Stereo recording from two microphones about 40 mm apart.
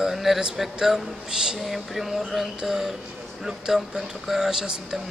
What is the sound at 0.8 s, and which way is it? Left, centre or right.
Speech, centre.